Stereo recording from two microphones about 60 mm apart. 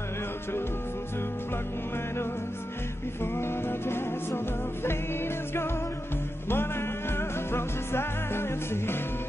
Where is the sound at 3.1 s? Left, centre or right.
Left.